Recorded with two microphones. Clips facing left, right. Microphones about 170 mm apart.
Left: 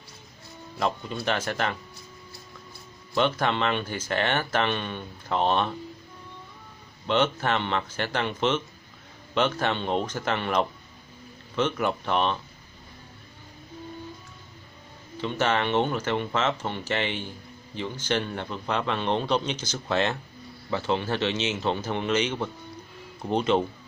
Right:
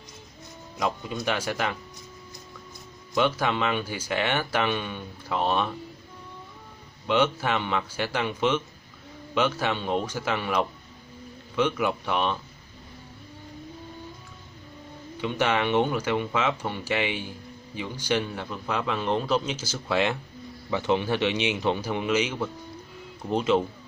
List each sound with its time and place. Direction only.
0.7 s speech: 10° right (ahead or behind)
3.2 s speech: 10° right (ahead or behind)
7.1 s speech: 10° right (ahead or behind)
15.1 s speech: 15° right (ahead or behind)